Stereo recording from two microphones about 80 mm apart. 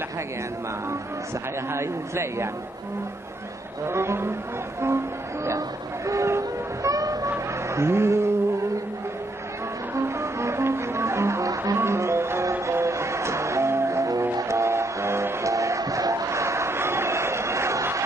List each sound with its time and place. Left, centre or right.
1.7 s a man's voice: right
3.8 s a man's voice: right
4.8 s music: right
6.0 s a sound: right
9.9 s music: right